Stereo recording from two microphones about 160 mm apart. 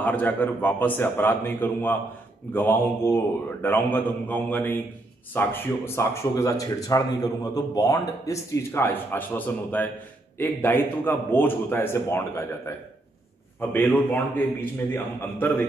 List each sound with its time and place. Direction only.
0.0 s speech: 10° left (ahead or behind)